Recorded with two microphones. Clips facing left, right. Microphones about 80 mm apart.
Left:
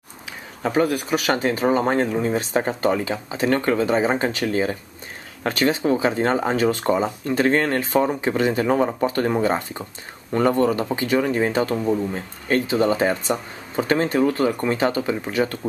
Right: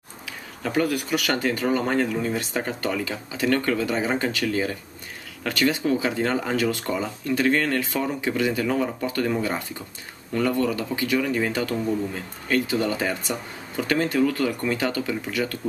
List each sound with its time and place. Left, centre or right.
0.6 s speech: left